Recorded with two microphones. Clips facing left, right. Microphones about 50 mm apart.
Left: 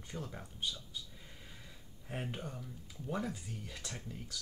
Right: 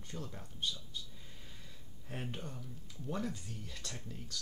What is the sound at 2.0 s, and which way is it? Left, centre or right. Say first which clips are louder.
Speech: left 2 dB; centre.